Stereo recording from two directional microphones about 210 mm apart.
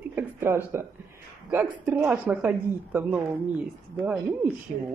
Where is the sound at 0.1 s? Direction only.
10° right (ahead or behind).